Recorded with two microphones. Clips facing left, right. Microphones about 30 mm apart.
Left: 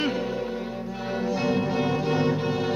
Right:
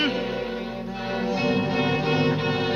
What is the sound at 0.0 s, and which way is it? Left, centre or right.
Music, right.